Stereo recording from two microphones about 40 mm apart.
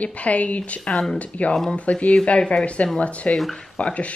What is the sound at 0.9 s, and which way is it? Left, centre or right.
Speech, centre.